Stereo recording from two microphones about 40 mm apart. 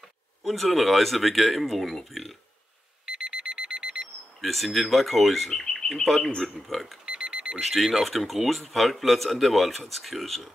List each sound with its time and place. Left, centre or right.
0.4 s speech: centre
3.1 s alarm: centre
4.4 s speech: centre
5.5 s bird: centre
6.0 s speech: centre
7.1 s alarm clock: centre
7.5 s speech: centre